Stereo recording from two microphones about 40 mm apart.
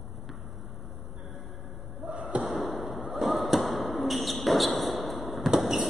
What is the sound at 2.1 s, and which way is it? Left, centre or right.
Slam, right.